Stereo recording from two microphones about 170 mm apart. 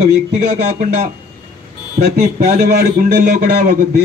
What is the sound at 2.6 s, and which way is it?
A man's voice, 70° right (ahead or behind).